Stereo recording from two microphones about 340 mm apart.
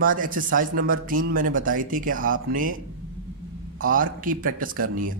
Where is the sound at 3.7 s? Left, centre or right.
Right.